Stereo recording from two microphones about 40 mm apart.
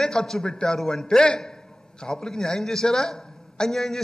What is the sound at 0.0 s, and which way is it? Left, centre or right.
A man's voice, centre.